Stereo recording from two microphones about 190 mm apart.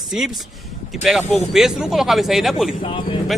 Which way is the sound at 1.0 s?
Centre (ahead or behind).